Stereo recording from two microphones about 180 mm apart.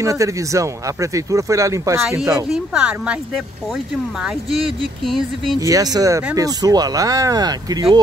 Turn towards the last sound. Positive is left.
turn(degrees=-20)  # may be behind; listen again after turning